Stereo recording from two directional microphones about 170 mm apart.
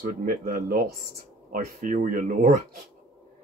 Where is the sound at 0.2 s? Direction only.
60° right (ahead or behind).